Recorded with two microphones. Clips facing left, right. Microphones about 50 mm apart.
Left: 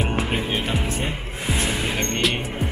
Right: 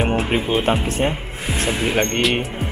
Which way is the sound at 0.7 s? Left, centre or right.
Right.